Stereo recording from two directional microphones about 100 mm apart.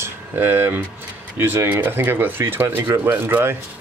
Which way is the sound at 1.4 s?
20° right (ahead or behind).